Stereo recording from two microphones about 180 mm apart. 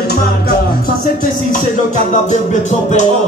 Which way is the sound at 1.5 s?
45° left (ahead or behind).